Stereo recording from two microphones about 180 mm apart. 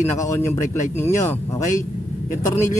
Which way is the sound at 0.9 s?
15° left (ahead or behind).